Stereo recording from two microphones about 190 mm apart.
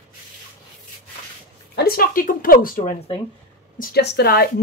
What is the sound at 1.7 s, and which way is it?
A woman's voice, 50° left (ahead or behind).